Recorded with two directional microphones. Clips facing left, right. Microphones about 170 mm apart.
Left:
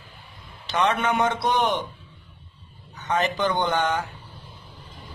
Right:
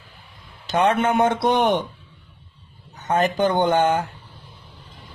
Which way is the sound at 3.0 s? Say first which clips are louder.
Right 4 dB; 50° right (ahead or behind).